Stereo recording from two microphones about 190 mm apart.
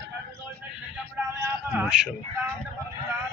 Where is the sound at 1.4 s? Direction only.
5° right (ahead or behind).